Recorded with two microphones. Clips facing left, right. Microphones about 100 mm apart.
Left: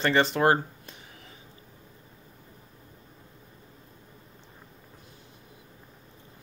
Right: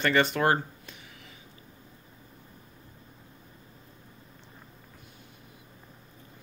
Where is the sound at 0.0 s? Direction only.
30° left (ahead or behind).